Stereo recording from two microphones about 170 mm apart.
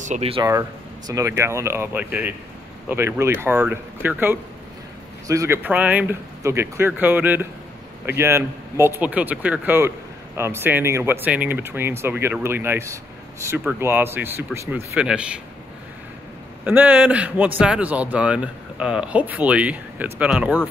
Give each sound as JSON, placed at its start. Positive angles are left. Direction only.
{"t": 0.0, "sound": "speech", "side_deg": -40}
{"t": 0.4, "sound": "speech", "side_deg": -20}
{"t": 16.6, "sound": "speech", "side_deg": -10}